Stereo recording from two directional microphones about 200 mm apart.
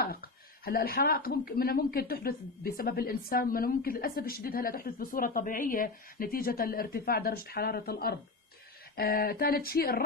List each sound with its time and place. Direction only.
0.0 s speech: 50° left (ahead or behind)